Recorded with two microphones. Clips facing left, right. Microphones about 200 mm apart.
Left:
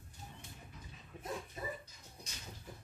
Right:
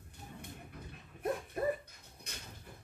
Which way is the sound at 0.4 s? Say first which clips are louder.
Right 6 dB; 60° right (ahead or behind).